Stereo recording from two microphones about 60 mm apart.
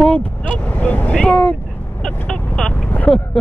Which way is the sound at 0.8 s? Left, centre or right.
Left.